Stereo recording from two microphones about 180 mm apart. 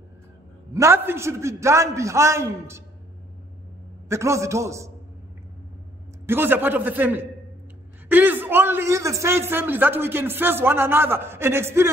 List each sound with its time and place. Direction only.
0.7 s a man's voice: 15° right (ahead or behind)
4.1 s a man's voice: 15° right (ahead or behind)
6.2 s a man's voice: 10° right (ahead or behind)